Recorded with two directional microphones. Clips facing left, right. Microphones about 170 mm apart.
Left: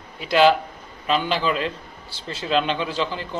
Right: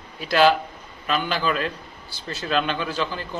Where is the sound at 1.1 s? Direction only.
25° left (ahead or behind).